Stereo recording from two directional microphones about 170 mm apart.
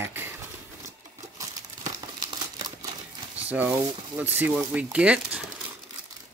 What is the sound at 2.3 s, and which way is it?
Crumpling, 20° right (ahead or behind).